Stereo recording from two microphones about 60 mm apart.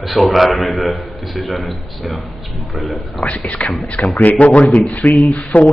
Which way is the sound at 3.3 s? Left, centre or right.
Left.